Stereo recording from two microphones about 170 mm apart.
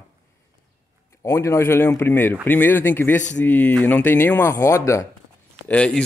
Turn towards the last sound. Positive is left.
turn(degrees=5)  # may be behind; listen again after turning